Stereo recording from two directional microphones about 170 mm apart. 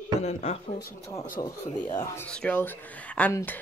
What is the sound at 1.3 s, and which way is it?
Speech, 15° left (ahead or behind).